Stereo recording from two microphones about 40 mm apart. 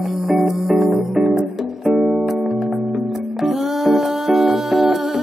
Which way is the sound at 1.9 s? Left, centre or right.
Centre.